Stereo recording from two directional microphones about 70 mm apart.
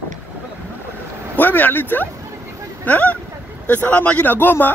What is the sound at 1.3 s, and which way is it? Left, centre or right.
A man's voice, left.